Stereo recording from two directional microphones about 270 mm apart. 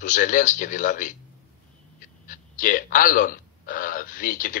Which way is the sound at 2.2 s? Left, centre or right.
Left.